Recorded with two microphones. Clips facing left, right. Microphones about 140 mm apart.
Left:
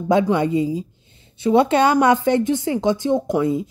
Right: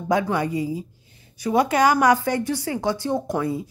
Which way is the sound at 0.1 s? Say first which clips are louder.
Left 5 dB; 20° left (ahead or behind).